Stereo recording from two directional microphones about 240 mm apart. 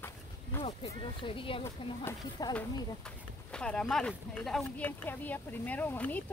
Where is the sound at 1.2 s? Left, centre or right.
Left.